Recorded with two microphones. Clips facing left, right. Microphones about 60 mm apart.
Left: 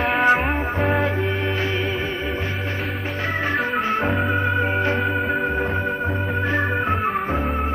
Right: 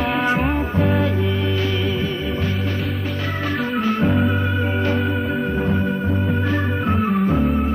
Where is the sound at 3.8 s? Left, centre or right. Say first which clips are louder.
Right 2 dB; left.